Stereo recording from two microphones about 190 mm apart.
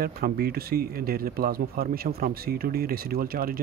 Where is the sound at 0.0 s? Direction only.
50° right (ahead or behind).